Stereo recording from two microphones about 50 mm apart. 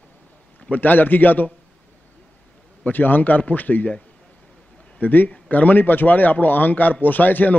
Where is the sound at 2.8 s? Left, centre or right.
Left.